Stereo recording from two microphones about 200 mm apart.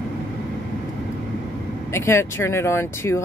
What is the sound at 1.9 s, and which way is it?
Speech, 15° left (ahead or behind).